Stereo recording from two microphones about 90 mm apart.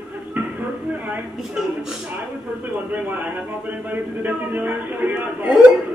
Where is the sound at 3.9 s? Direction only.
20° right (ahead or behind).